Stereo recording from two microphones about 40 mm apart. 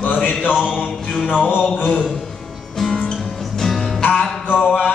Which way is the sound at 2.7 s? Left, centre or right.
Centre.